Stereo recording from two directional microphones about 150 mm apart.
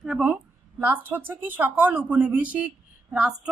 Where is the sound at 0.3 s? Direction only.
10° right (ahead or behind).